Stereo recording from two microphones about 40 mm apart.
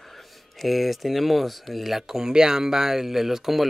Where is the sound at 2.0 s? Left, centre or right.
Centre.